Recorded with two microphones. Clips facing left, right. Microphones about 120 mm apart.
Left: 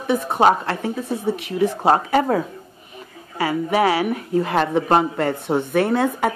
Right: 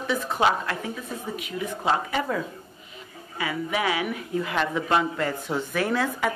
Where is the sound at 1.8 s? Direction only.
40° left (ahead or behind).